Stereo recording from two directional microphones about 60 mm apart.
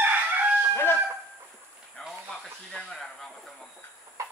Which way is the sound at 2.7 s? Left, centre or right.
Centre.